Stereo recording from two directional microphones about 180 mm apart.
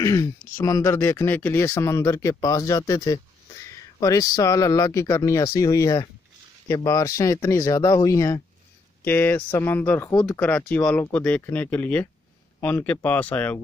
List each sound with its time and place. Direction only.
0.0 s speech: 20° left (ahead or behind)